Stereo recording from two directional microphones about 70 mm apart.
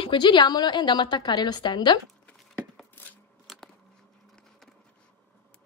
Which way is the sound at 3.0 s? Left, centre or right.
Left.